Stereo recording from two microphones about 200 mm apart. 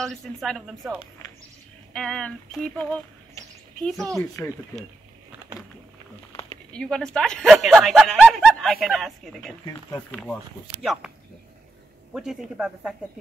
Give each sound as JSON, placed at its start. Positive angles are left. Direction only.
{"t": 0.0, "sound": "speech", "side_deg": 0}
{"t": 6.7, "sound": "speech", "side_deg": 5}
{"t": 9.7, "sound": "speech", "side_deg": 15}
{"t": 10.1, "sound": "speech", "side_deg": 5}
{"t": 12.1, "sound": "speech", "side_deg": -5}